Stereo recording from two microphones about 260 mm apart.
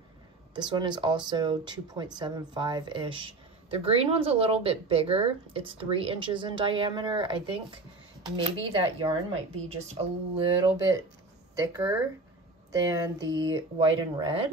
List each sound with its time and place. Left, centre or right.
0.6 s speech: centre